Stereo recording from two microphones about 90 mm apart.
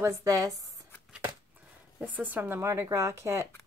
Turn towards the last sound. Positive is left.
turn(degrees=-35)  # may be behind; listen again after turning